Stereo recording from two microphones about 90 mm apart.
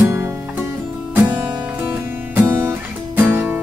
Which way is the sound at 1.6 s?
25° right (ahead or behind).